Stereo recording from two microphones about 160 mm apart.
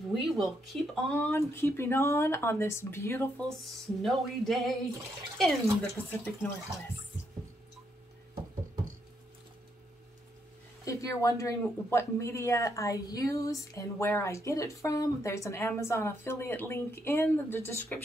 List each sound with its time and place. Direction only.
0.2 s speech: centre (ahead or behind)
1.0 s speech: 15° left (ahead or behind)
3.4 s speech: centre (ahead or behind)
10.9 s speech: 20° left (ahead or behind)